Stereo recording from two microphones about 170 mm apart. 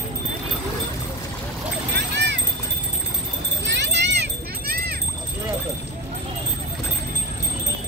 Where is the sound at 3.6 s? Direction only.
90° right; by 5.0 s 65° right (ahead or behind).